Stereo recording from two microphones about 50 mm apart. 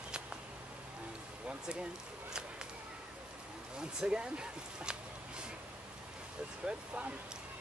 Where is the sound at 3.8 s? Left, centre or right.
Centre.